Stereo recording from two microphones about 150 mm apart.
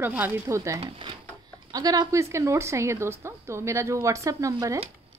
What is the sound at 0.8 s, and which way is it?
A woman's voice, 35° right (ahead or behind).